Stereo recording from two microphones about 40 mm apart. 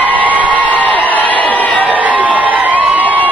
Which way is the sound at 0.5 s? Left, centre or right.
Left.